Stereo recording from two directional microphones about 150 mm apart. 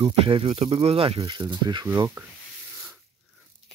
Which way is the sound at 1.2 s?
30° right (ahead or behind).